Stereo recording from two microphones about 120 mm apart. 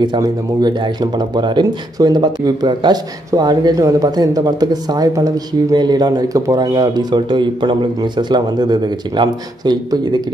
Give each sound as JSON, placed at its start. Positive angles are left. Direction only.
{"t": 0.0, "sound": "speech", "side_deg": -35}